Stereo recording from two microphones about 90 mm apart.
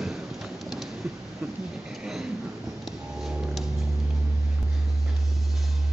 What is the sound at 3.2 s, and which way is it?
Music, 5° right (ahead or behind).